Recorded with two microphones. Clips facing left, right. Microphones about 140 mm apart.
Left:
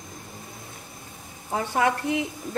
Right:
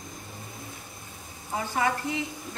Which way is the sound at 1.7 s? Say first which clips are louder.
Left 4 dB; 65° left (ahead or behind).